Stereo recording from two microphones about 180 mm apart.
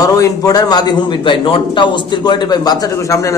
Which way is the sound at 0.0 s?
20° left (ahead or behind).